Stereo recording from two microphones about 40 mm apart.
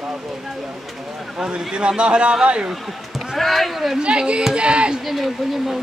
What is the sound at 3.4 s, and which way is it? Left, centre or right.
Speech, centre.